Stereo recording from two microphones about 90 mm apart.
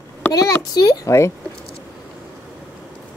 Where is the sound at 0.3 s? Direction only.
40° left (ahead or behind).